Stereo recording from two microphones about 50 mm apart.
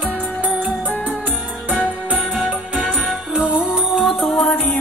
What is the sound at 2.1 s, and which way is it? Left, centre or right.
Music, centre.